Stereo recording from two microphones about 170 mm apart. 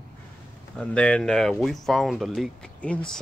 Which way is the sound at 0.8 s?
5° left (ahead or behind).